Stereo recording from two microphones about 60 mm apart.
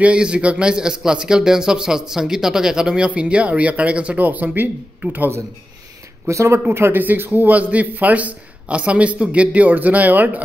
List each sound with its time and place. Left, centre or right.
0.0 s a man's voice: centre
6.2 s speech: right
6.7 s a man's voice: right